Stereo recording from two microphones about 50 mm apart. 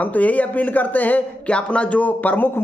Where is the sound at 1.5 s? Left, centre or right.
Left.